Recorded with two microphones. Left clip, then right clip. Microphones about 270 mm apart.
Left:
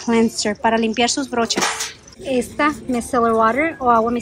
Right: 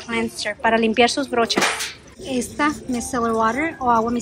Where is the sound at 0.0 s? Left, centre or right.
Centre.